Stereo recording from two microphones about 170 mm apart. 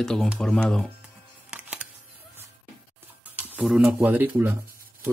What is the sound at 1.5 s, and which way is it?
Music, 5° right (ahead or behind).